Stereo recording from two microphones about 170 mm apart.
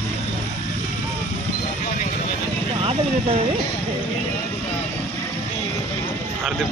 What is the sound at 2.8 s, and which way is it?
Vehicle, 35° right (ahead or behind).